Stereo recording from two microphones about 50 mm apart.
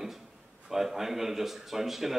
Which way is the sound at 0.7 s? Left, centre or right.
Centre.